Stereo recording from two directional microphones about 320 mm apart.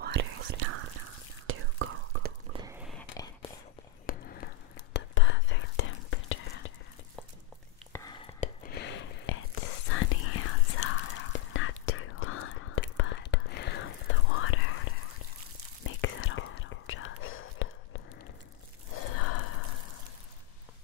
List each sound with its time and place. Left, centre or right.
0.0 s whispering: right
2.5 s a sound: centre
3.0 s whispering: centre
4.0 s whispering: left
7.9 s chopping: centre
8.4 s whispering: left
19.1 s a sound: left